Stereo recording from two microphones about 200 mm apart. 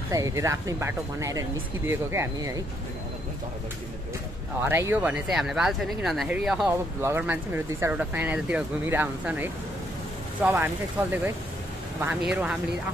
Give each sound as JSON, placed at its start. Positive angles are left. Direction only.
{"t": 0.1, "sound": "speech", "side_deg": -15}
{"t": 4.6, "sound": "speech", "side_deg": -10}